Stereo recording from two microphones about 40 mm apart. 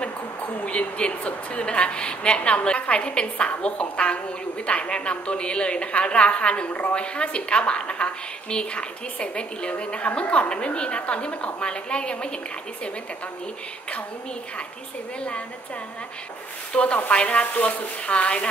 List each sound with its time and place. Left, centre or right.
0.7 s a woman's voice: left
6.7 s a woman's voice: left
7.0 s a woman's voice: left
16.7 s a woman's voice: left